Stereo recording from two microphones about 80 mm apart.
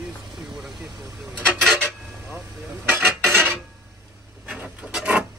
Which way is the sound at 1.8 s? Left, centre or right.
Right.